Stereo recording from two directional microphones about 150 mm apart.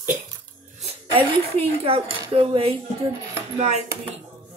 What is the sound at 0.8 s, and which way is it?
A woman's voice, 40° right (ahead or behind).